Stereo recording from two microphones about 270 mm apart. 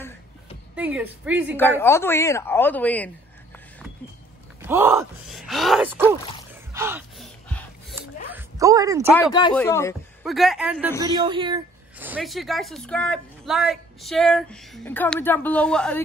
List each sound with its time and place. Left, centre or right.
0.7 s speech: centre
1.8 s a woman's voice: centre
4.6 s speech: centre
6.7 s gasp: centre
8.3 s a sound: centre
9.1 s a woman's voice: centre
10.2 s speech: centre
11.1 s speech: centre
12.0 s speech: centre